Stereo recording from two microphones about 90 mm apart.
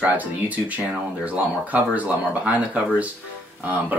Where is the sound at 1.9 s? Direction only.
15° right (ahead or behind).